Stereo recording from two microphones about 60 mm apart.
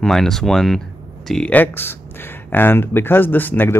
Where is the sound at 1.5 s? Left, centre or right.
Left.